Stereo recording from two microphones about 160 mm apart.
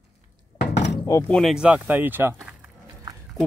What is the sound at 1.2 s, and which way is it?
Speech, centre (ahead or behind).